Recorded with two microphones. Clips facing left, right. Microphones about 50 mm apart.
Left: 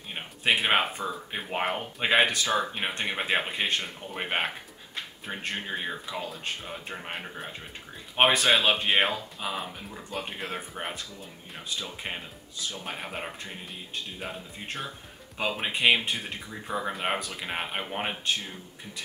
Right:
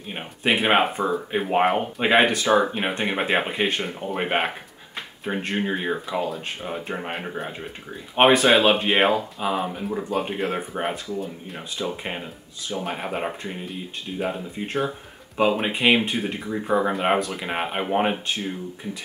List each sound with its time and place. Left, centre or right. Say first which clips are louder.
0.1 s speech: right 3 dB; centre
2.4 s speech: right 8 dB; centre
11.1 s speech: right 11 dB; centre
14.3 s speech: right 9 dB; centre
16.4 s speech: right 10 dB; right
16.9 s speech: right 8 dB; centre